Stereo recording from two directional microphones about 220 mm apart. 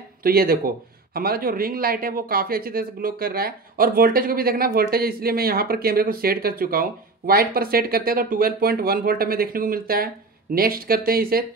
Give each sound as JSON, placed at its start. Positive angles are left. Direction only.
{"t": 0.2, "sound": "speech", "side_deg": -45}